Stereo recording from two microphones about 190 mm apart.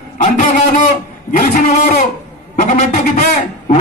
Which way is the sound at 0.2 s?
40° left (ahead or behind).